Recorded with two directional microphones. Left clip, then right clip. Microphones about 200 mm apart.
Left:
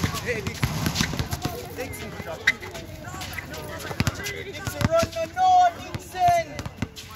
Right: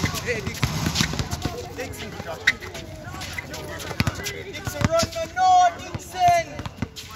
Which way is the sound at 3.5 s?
25° right (ahead or behind).